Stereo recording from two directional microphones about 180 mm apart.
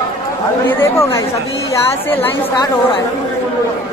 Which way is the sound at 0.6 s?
10° left (ahead or behind).